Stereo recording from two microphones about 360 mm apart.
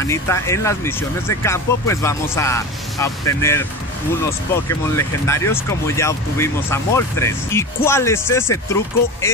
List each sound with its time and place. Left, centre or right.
0.0 s speech: centre